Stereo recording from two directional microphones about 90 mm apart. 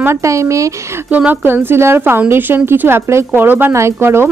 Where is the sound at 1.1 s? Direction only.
20° right (ahead or behind).